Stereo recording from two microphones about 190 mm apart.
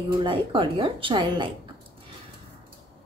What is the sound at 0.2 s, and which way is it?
Speech, 25° right (ahead or behind).